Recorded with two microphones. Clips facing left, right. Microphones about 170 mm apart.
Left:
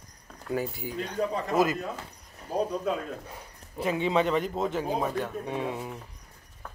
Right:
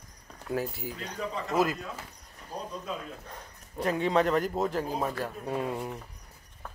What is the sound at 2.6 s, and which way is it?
Speech, 65° left (ahead or behind).